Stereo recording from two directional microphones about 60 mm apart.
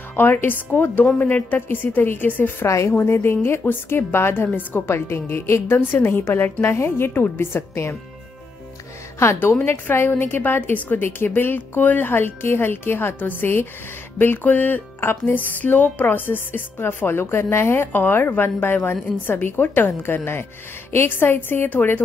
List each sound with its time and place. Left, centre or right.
0.1 s speech: left
2.6 s speech: left
2.9 s speech: left
9.2 s a woman's voice: left